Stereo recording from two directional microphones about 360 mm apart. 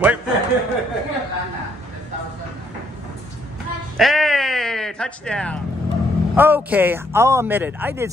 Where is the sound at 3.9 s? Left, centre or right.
Centre.